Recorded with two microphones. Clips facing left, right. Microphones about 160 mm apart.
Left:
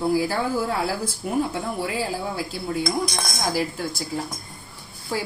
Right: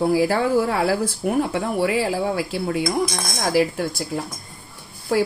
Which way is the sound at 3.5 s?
75° right (ahead or behind).